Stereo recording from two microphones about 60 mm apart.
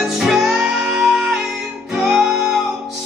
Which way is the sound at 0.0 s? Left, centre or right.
Centre.